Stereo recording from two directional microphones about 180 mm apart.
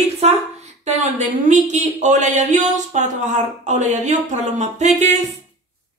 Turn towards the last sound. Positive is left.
turn(degrees=-40)  # may be behind; listen again after turning